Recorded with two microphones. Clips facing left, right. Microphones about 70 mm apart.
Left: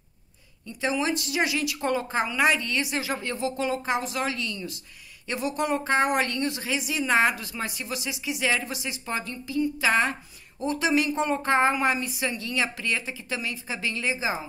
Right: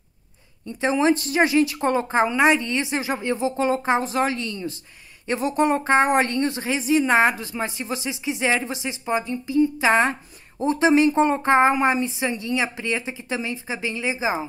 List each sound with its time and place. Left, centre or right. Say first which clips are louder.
0.7 s speech: right 7 dB; right